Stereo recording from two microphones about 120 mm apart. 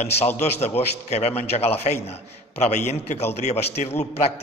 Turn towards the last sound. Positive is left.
turn(degrees=60)  # may be behind; listen again after turning